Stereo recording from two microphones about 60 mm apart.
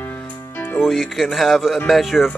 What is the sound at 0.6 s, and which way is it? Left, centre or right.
Music, left.